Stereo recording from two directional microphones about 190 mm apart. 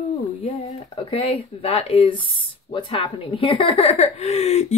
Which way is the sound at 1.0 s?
30° left (ahead or behind).